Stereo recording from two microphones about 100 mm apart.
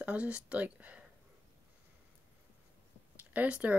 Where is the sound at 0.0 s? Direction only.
15° right (ahead or behind).